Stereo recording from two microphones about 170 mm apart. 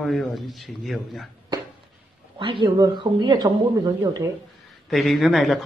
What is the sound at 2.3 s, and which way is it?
A woman's voice, 30° right (ahead or behind).